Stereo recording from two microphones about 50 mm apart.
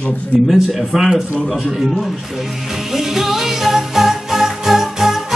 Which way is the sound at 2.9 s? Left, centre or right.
Centre.